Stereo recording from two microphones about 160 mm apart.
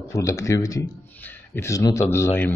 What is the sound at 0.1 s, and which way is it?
A man's voice, 20° left (ahead or behind).